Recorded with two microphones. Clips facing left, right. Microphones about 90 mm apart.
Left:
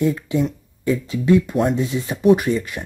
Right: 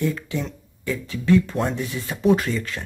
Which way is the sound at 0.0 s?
20° left (ahead or behind).